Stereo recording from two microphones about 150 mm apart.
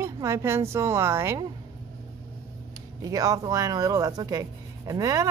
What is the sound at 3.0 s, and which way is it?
Speech, 25° right (ahead or behind).